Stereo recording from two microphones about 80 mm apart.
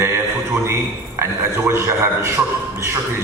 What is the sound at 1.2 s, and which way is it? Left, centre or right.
A man's voice, right.